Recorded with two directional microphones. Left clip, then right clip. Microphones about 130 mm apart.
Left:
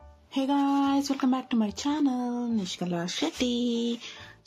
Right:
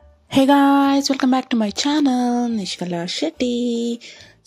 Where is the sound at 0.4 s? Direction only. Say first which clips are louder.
Right 12 dB; 90° right.